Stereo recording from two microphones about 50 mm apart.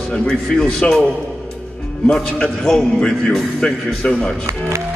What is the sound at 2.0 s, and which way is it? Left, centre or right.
A man's voice, centre.